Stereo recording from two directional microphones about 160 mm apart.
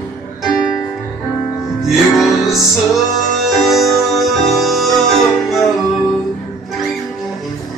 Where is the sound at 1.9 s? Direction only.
Centre (ahead or behind).